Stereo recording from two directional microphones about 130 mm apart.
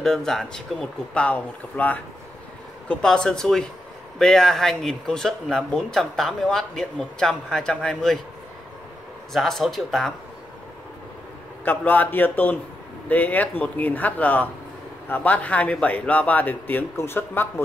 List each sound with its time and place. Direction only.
0.0 s speech: 5° left (ahead or behind)
9.3 s speech: centre (ahead or behind)
11.6 s speech: 15° left (ahead or behind)